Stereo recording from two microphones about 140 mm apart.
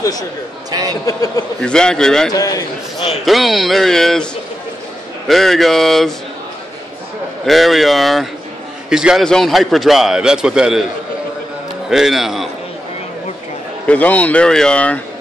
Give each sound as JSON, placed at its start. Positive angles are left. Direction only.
{"t": 0.7, "sound": "a sound", "side_deg": -25}
{"t": 1.0, "sound": "a man's voice", "side_deg": 25}
{"t": 1.6, "sound": "a man's voice", "side_deg": 5}
{"t": 2.3, "sound": "a man's voice", "side_deg": 25}
{"t": 3.1, "sound": "a man's voice", "side_deg": 0}
{"t": 5.3, "sound": "a man's voice", "side_deg": 0}
{"t": 7.4, "sound": "a man's voice", "side_deg": 0}
{"t": 11.9, "sound": "a man's voice", "side_deg": 0}
{"t": 13.8, "sound": "speech", "side_deg": 10}